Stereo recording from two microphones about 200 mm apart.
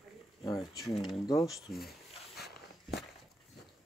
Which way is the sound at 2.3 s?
55° left (ahead or behind).